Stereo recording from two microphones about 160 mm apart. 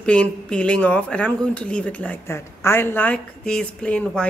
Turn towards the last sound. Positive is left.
turn(degrees=5)  # may be behind; listen again after turning